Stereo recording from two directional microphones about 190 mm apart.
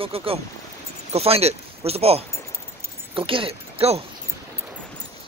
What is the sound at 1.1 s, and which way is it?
Speech, 30° right (ahead or behind).